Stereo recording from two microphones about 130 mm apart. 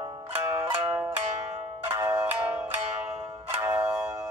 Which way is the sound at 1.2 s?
60° right (ahead or behind).